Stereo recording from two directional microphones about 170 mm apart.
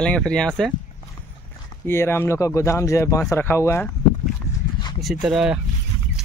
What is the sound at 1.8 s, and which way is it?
Speech, 15° left (ahead or behind).